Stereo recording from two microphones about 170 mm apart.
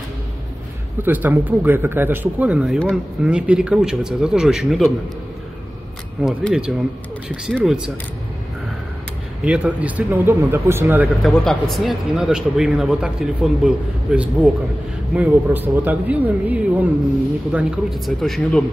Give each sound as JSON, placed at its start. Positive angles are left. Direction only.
{"t": 1.0, "sound": "speech", "side_deg": -10}
{"t": 6.2, "sound": "speech", "side_deg": 0}
{"t": 9.4, "sound": "speech", "side_deg": -5}
{"t": 11.2, "sound": "speech", "side_deg": 0}